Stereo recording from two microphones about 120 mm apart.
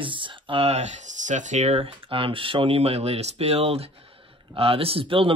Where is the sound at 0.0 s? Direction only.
45° right (ahead or behind); by 1.9 s 75° right (ahead or behind).